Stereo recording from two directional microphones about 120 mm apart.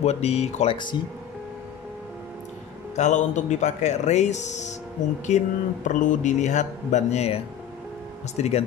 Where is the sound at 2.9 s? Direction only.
85° left.